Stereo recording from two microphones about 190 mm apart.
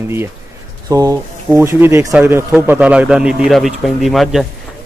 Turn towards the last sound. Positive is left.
turn(degrees=0)  # may be behind; listen again after turning